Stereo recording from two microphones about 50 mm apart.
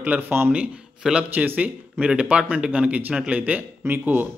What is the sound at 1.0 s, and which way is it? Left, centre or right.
A man's voice, centre.